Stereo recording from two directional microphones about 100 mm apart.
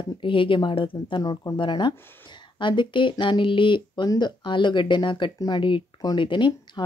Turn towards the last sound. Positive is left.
turn(degrees=55)  # may be behind; listen again after turning